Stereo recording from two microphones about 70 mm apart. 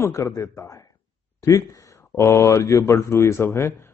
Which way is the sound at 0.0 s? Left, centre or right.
Left.